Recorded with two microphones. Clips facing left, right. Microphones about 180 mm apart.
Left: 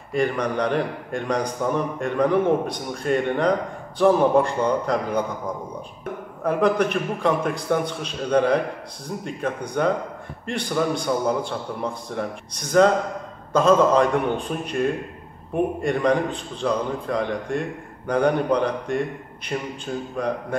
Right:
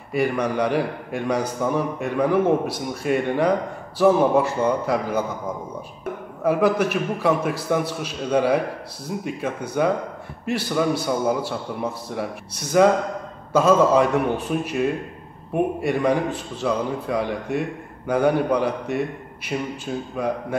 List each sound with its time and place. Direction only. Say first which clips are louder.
0.1 s a man's voice: right 1 dB; 5° right (ahead or behind)
6.4 s a man's voice: right 1 dB; 5° right (ahead or behind)